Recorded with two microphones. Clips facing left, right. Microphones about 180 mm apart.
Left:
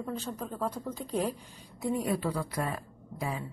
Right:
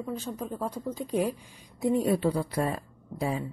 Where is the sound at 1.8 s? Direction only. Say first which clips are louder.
Right 5 dB; 25° right (ahead or behind).